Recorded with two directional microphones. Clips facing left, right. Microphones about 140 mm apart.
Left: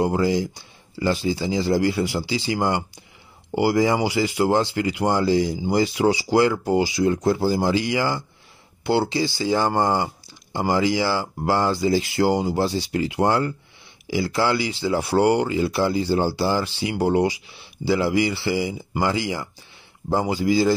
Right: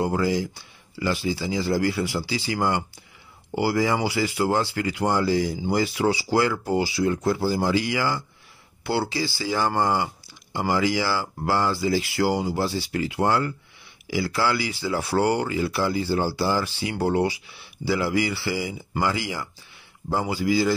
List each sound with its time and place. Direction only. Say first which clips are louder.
0.0 s speech: left 3 dB; 20° left (ahead or behind)
17.5 s speech: left 4 dB; 25° left (ahead or behind)